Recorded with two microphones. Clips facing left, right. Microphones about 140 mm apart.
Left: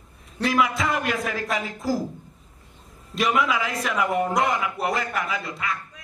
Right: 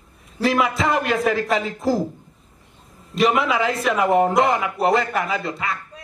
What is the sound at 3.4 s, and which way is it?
A man's voice, 30° right (ahead or behind).